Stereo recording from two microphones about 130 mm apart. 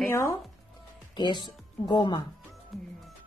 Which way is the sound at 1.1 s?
35° left (ahead or behind).